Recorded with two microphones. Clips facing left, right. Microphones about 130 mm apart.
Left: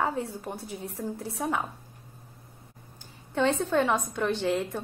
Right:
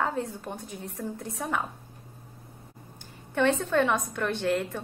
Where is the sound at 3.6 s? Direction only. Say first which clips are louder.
Even; 15° left (ahead or behind).